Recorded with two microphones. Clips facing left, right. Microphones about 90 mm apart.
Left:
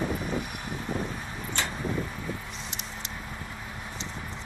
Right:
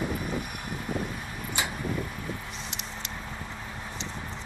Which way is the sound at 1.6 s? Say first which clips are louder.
Even; 10° right (ahead or behind).